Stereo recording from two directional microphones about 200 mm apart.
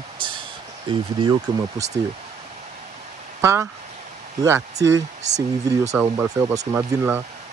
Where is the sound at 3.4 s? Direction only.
15° right (ahead or behind).